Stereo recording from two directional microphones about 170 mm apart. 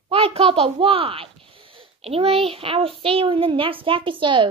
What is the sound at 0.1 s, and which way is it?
A child's voice, 35° right (ahead or behind).